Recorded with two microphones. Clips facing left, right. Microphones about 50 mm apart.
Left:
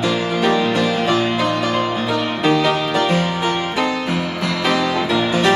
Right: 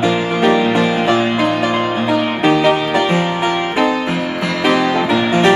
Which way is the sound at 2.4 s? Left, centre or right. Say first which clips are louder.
Right 3 dB; centre.